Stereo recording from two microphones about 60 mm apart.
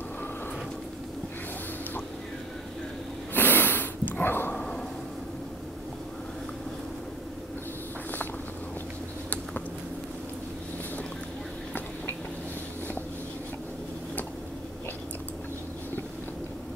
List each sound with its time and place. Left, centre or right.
3.3 s sniff: left
4.5 s dog: centre